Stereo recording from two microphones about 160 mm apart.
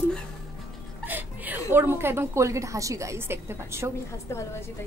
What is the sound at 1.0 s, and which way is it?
A woman's voice, 10° right (ahead or behind).